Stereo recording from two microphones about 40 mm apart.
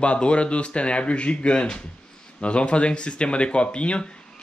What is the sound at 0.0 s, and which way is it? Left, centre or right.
Speech, left.